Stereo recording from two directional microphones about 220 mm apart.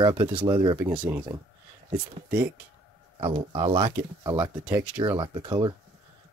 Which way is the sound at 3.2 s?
25° right (ahead or behind).